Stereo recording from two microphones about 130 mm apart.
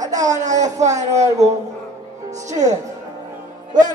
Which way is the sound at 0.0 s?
30° right (ahead or behind).